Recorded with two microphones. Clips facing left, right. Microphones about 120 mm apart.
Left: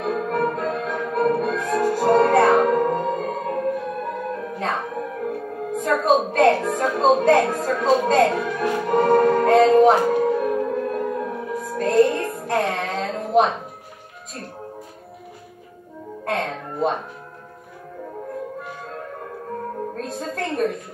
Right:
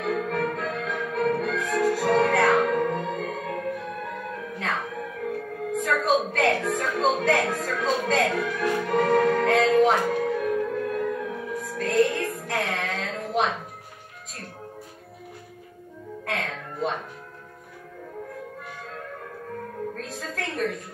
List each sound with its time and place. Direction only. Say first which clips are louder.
0.0 s music: left 4 dB; 35° left (ahead or behind)
16.3 s music: left 6 dB; 35° left (ahead or behind)
18.7 s music: left 4 dB; 35° left (ahead or behind)